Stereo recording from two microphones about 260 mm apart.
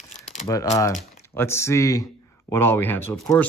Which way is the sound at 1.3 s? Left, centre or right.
Centre.